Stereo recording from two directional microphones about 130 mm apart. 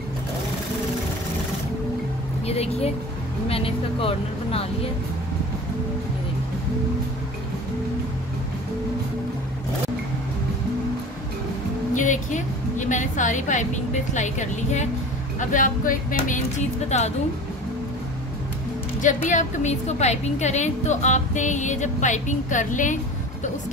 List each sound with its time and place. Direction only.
2.4 s speech: 50° left (ahead or behind)
3.4 s vehicle: 45° left (ahead or behind)
11.9 s a sound: 75° left (ahead or behind)
14.1 s a woman's voice: 65° left (ahead or behind)
15.5 s speech: 90° left; by 17.1 s 65° left (ahead or behind)
19.2 s a woman's voice: 65° left (ahead or behind)